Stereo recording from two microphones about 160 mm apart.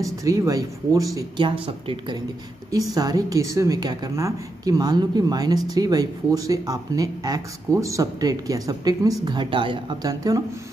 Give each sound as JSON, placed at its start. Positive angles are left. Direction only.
{"t": 0.0, "sound": "a woman's voice", "side_deg": -20}